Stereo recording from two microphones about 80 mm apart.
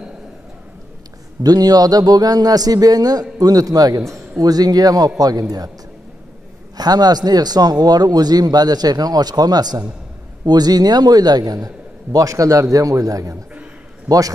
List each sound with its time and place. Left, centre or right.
1.4 s a man's voice: right
6.8 s a man's voice: right